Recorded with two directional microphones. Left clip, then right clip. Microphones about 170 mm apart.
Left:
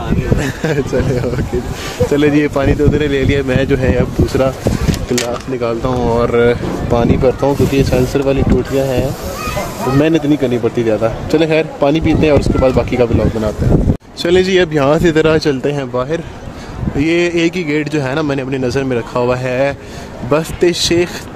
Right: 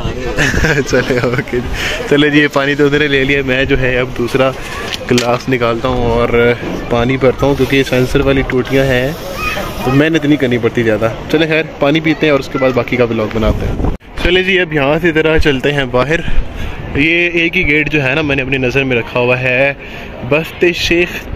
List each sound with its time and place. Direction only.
0.4 s speech: centre (ahead or behind)
3.3 s speech: 15° left (ahead or behind)
5.6 s speech: 10° left (ahead or behind)
11.3 s speech: 20° left (ahead or behind)
14.2 s speech: 25° left (ahead or behind); by 15.8 s 10° left (ahead or behind)
15.9 s a man's voice: 15° right (ahead or behind)
17.0 s speech: 15° left (ahead or behind)